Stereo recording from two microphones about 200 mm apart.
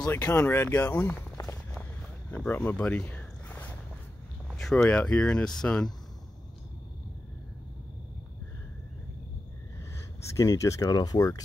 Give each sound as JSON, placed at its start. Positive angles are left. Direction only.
{"t": 0.0, "sound": "speech", "side_deg": 10}
{"t": 2.3, "sound": "a sound", "side_deg": 10}
{"t": 4.5, "sound": "speech", "side_deg": 0}
{"t": 10.3, "sound": "speech", "side_deg": 15}